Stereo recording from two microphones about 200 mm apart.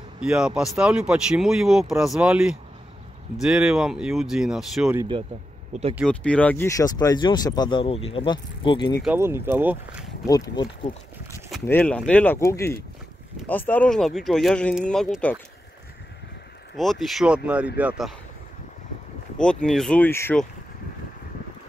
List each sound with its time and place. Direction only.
0.2 s speech: 5° right (ahead or behind)
5.7 s speech: 30° right (ahead or behind)
6.0 s speech: 5° left (ahead or behind); by 9.0 s 25° left (ahead or behind)
9.0 s speech: 10° right (ahead or behind)
10.2 s speech: 20° left (ahead or behind)
11.5 s speech: 10° left (ahead or behind)
16.7 s speech: centre (ahead or behind)
19.3 s speech: 5° left (ahead or behind)